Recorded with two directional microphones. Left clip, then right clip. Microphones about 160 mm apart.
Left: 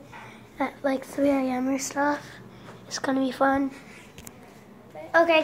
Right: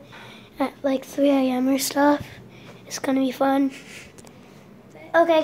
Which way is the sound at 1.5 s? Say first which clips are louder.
Right 5 dB; 40° right (ahead or behind).